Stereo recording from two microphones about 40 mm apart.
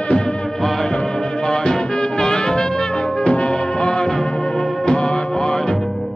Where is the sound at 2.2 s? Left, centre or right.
Centre.